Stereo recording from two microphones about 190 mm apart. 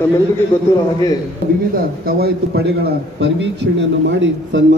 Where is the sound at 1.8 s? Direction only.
55° right (ahead or behind).